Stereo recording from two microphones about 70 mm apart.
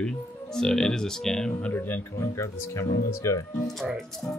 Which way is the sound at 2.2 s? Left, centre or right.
Left.